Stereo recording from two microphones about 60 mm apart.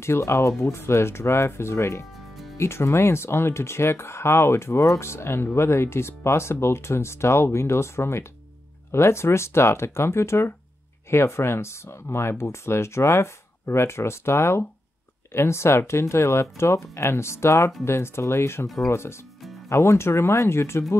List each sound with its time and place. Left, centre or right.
0.0 s speech: left
2.1 s music: centre
2.5 s speech: left